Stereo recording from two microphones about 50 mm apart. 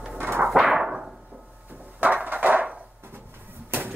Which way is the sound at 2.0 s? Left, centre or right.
Right.